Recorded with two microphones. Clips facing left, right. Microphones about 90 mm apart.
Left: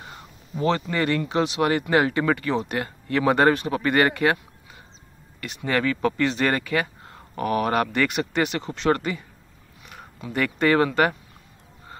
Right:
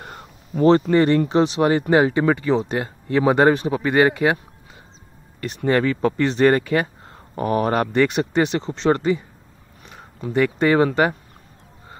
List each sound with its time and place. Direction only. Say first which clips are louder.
0.2 s speech: right 8 dB; 35° right (ahead or behind); by 4.4 s 15° right (ahead or behind)
5.7 s speech: right 4 dB; 30° right (ahead or behind)
10.3 s speech: right 3 dB; 20° right (ahead or behind)